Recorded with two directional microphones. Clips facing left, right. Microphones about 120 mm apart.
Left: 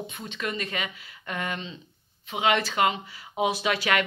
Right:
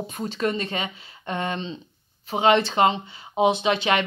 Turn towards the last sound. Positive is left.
turn(degrees=-25)  # may be behind; listen again after turning